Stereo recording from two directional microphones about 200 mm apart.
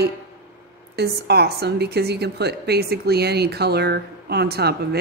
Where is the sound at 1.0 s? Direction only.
55° right (ahead or behind).